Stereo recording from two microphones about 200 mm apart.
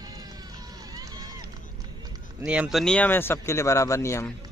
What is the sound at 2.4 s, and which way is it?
Speech, 5° right (ahead or behind).